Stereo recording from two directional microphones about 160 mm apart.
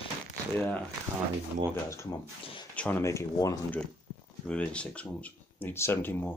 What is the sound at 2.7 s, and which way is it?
Speech, 10° left (ahead or behind).